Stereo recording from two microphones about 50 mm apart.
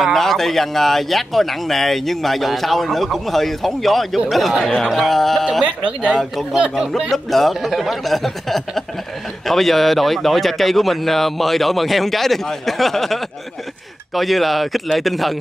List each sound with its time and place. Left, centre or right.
0.0 s speech: centre
4.6 s speech: centre
5.9 s speech: right
6.9 s speech: centre